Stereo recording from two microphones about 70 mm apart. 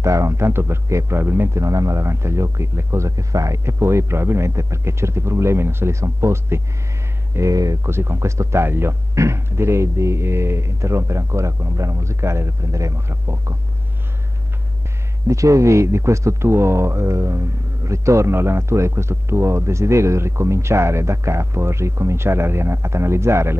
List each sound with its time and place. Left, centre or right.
0.0 s speech: right
1.6 s speech: right
7.8 s speech: right
15.2 s speech: right